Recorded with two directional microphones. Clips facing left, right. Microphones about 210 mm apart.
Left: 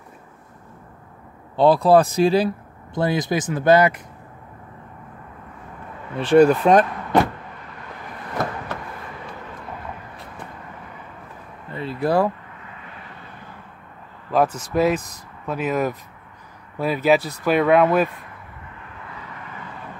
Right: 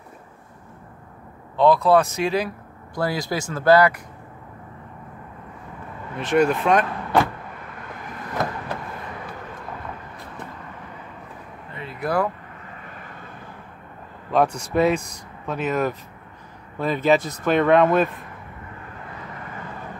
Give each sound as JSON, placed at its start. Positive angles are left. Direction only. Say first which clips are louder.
{"t": 1.6, "sound": "a man's voice", "louder": "left 2 dB", "side_deg": 35}
{"t": 6.1, "sound": "speech", "louder": "left 6 dB", "side_deg": 35}
{"t": 11.7, "sound": "a sound", "louder": "left 4 dB", "side_deg": 30}
{"t": 14.3, "sound": "a man's voice", "louder": "even", "side_deg": 5}